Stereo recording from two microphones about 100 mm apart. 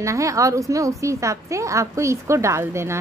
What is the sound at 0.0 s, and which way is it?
A woman's voice, 30° right (ahead or behind).